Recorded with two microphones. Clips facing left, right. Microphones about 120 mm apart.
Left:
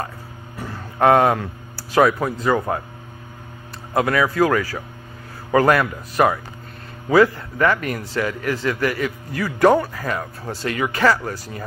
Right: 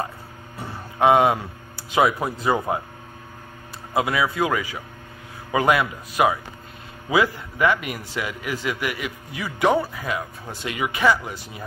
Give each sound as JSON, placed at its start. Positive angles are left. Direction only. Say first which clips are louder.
{"t": 1.0, "sound": "a man's voice", "louder": "left 2 dB", "side_deg": -10}
{"t": 3.9, "sound": "a man's voice", "louder": "left 3 dB", "side_deg": -10}
{"t": 11.0, "sound": "speech", "louder": "left 1 dB", "side_deg": -5}